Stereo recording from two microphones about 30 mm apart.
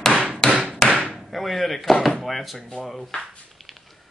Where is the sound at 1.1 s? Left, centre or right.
Centre.